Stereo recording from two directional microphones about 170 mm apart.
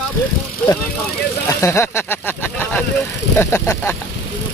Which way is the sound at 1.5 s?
15° left (ahead or behind).